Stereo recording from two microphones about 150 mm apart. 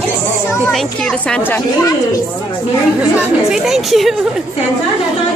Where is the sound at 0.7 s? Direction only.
5° left (ahead or behind).